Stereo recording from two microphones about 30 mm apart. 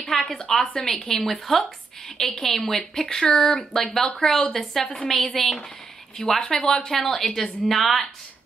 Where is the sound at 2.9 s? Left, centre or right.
Left; by 4.2 s centre.